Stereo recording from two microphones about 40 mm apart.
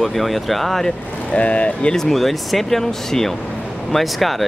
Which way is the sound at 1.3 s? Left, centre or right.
Left.